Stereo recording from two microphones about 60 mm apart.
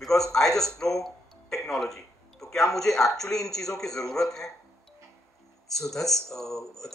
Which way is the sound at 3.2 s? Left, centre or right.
Left.